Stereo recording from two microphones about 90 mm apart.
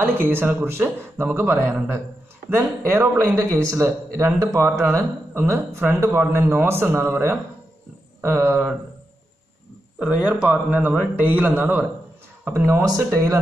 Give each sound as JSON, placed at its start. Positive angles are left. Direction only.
{"t": 0.0, "sound": "speech", "side_deg": -25}
{"t": 9.9, "sound": "a man's voice", "side_deg": -10}